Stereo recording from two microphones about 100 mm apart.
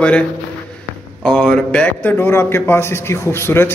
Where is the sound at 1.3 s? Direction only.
10° left (ahead or behind).